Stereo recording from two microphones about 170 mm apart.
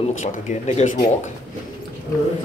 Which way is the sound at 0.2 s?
40° left (ahead or behind).